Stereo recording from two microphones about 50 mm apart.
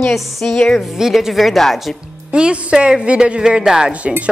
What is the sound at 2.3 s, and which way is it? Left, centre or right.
Speech, right.